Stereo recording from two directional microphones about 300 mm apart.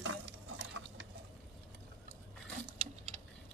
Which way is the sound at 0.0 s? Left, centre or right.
Right.